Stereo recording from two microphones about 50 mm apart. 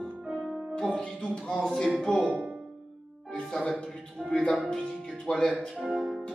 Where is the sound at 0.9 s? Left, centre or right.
Centre.